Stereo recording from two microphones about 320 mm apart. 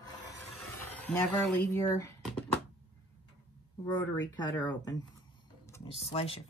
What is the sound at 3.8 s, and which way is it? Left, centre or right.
Speech, centre.